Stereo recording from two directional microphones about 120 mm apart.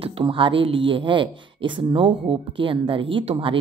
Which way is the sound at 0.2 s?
45° right (ahead or behind).